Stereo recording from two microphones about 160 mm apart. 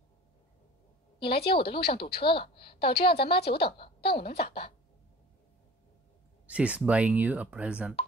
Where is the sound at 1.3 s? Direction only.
85° left.